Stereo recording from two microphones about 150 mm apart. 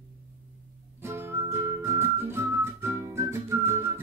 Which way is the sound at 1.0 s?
15° right (ahead or behind).